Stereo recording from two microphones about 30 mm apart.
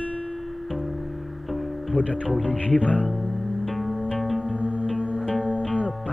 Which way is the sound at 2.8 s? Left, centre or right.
Left.